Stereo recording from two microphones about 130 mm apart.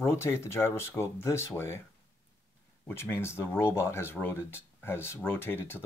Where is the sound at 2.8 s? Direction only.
15° left (ahead or behind).